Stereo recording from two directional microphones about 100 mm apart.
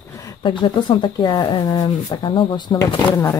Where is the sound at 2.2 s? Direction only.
55° left (ahead or behind).